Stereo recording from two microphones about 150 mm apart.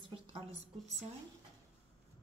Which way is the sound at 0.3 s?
40° right (ahead or behind).